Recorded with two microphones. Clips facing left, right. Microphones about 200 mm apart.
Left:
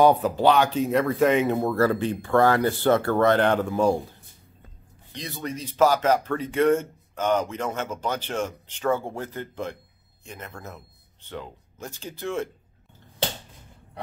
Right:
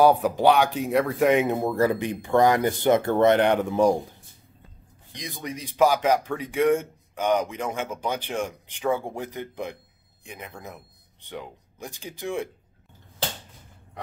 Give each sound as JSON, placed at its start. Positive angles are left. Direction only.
{"t": 0.0, "sound": "speech", "side_deg": -10}
{"t": 5.1, "sound": "speech", "side_deg": -15}